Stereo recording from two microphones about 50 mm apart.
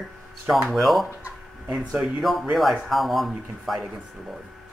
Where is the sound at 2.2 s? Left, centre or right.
Centre.